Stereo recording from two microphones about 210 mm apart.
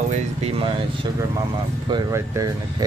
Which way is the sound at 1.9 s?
15° right (ahead or behind).